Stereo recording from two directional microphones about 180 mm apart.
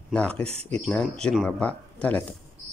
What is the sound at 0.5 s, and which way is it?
Speech, 35° right (ahead or behind).